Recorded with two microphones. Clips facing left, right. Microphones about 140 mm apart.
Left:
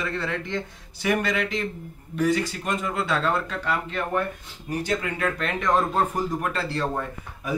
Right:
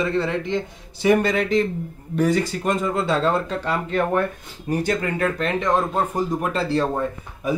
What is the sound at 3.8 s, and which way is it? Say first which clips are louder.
Speech: right 6 dB; 45° right (ahead or behind).